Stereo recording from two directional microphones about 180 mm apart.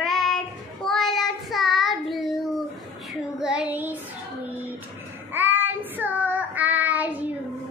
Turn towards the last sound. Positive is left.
turn(degrees=-10)  # may be behind; listen again after turning